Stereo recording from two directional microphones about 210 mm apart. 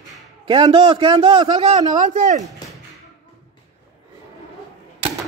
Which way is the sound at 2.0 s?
35° right (ahead or behind).